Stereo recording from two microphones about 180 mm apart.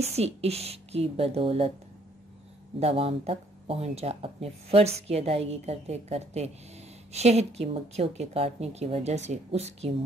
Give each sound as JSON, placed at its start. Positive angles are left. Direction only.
{"t": 0.0, "sound": "speech", "side_deg": -35}
{"t": 2.8, "sound": "speech", "side_deg": -30}